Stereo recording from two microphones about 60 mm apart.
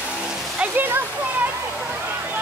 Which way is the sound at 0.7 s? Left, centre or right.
Right.